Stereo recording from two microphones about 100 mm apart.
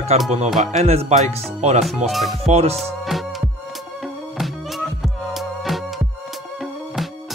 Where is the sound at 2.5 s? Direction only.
90° right.